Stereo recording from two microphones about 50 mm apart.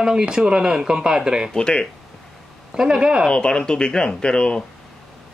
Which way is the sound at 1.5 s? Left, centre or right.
Centre.